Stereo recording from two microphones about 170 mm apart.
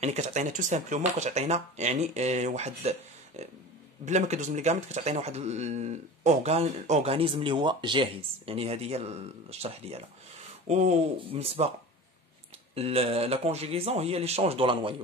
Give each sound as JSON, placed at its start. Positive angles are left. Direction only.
{"t": 0.0, "sound": "speech", "side_deg": -45}
{"t": 12.7, "sound": "speech", "side_deg": -35}